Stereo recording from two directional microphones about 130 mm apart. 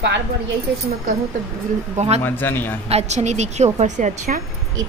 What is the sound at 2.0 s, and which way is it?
Speech, 55° right (ahead or behind).